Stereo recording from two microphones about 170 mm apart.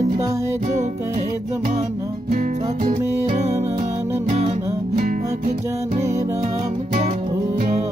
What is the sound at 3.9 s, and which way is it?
Music, 15° right (ahead or behind).